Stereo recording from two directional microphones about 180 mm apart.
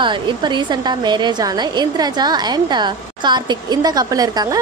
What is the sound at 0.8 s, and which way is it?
A woman's voice, 25° right (ahead or behind).